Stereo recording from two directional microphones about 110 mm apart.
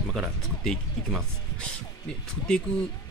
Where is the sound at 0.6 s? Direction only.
5° left (ahead or behind).